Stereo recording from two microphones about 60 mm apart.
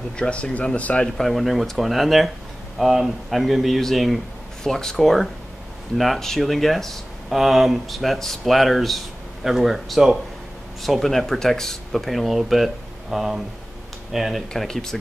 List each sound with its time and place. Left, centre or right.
0.2 s speech: centre
1.1 s speech: centre
14.5 s speech: centre